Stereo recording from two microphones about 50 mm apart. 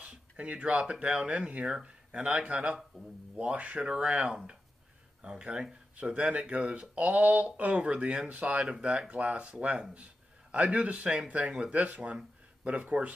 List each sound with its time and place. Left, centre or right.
0.4 s speech: right
3.8 s speech: centre